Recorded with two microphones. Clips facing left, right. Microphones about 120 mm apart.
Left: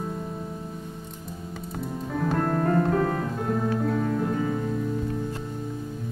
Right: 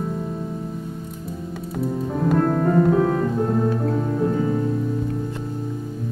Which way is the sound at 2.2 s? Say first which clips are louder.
Right 5 dB; 5° right (ahead or behind).